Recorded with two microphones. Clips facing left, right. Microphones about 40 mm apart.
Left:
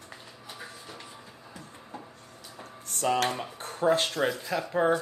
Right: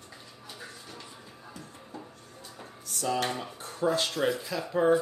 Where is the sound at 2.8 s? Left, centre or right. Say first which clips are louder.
Left 3 dB; left.